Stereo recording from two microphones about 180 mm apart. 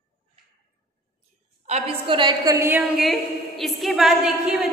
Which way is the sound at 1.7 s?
35° right (ahead or behind).